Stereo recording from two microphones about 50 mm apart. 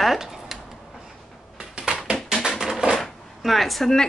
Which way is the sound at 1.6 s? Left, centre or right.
Centre.